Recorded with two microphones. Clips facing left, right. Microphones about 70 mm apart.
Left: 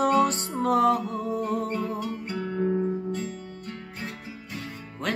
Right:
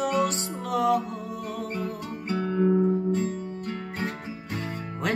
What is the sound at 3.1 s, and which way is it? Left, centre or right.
Music, right.